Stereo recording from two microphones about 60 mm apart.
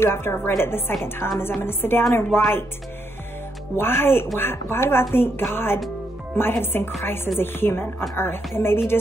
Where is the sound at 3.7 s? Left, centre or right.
Left.